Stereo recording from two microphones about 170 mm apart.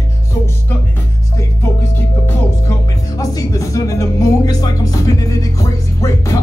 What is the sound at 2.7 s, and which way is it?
Music, 20° left (ahead or behind).